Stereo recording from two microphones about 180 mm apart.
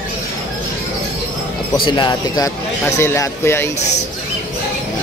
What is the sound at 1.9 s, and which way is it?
Speech, 25° left (ahead or behind).